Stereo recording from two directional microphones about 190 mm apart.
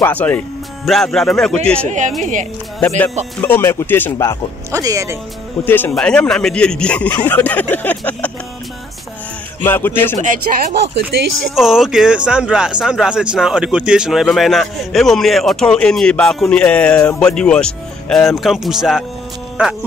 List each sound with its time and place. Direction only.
0.0 s a man's voice: 10° left (ahead or behind)
1.9 s speech: 40° right (ahead or behind)
3.3 s a man's voice: 10° left (ahead or behind)
4.6 s speech: 15° right (ahead or behind)
5.7 s a man's voice: 10° left (ahead or behind)
9.6 s a man's voice: 10° left (ahead or behind)
10.2 s speech: 45° right (ahead or behind)
11.1 s speech: 60° right (ahead or behind)
11.5 s speech: centre (ahead or behind)